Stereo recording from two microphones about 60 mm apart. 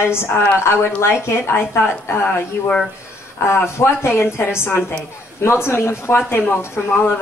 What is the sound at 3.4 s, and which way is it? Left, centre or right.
A woman's voice, left.